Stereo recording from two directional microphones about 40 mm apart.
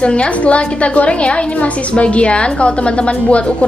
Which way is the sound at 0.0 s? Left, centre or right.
Left.